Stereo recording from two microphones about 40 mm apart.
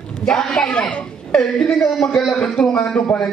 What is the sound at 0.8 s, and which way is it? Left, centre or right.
Speech, left.